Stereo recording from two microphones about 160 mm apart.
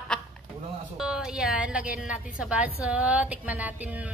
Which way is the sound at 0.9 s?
5° right (ahead or behind).